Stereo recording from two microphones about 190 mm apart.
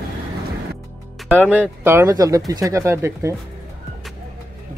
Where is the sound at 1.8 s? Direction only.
15° right (ahead or behind).